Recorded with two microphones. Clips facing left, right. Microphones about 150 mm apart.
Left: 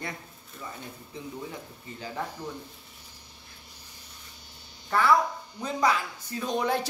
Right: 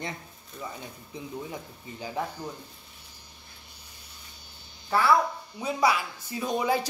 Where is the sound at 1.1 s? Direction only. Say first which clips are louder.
Even; 15° right (ahead or behind).